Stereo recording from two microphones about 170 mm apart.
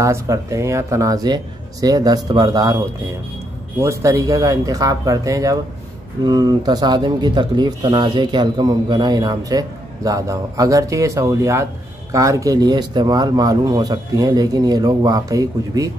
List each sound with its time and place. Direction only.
0.0 s speech: 20° right (ahead or behind)